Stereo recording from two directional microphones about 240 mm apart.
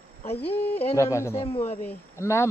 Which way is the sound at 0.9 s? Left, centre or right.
Centre.